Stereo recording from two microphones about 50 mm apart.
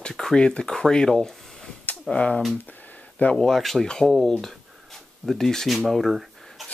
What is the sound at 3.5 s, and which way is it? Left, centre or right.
Speech, centre.